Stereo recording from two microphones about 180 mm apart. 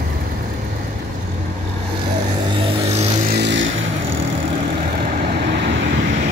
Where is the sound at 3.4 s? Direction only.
90° right.